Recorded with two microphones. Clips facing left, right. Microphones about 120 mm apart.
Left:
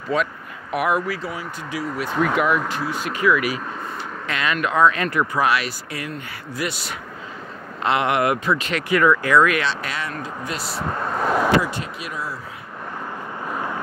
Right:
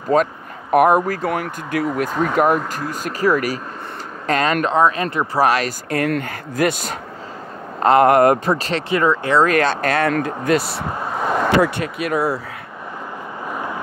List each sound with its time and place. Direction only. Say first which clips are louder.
0.1 s speech: right 6 dB; 45° right (ahead or behind)
1.3 s speech: right 7 dB; 60° right (ahead or behind)
10.9 s vehicle: left 1 dB; 5° right (ahead or behind)
11.6 s speech: right 8 dB; 60° right (ahead or behind)